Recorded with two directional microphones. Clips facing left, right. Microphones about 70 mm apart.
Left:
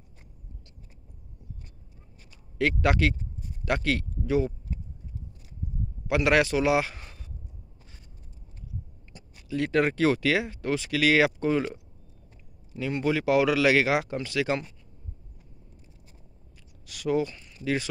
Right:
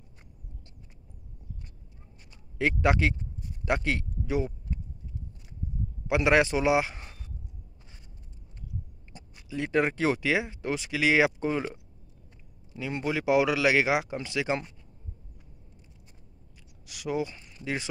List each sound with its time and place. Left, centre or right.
2.3 s speech: centre
6.0 s speech: centre
9.1 s a sound: right
9.5 s speech: centre
16.8 s speech: centre